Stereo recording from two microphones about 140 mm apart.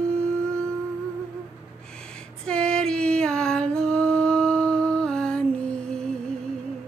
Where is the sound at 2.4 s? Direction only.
5° left (ahead or behind).